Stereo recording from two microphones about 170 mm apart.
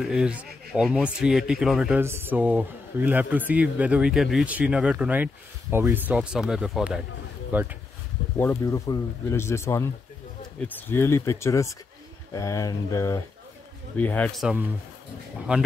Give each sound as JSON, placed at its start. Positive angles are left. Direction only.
{"t": 0.1, "sound": "speech", "side_deg": -5}
{"t": 8.4, "sound": "speech", "side_deg": 15}
{"t": 14.4, "sound": "speech", "side_deg": -5}